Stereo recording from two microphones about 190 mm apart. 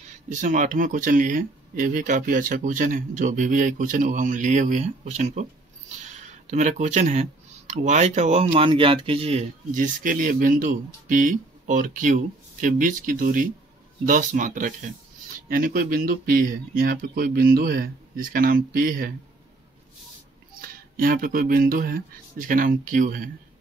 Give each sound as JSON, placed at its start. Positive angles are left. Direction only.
{"t": 0.3, "sound": "speech", "side_deg": -40}
{"t": 20.6, "sound": "speech", "side_deg": -50}